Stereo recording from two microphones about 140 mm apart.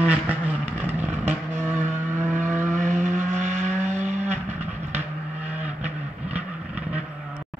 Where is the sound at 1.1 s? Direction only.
55° right (ahead or behind).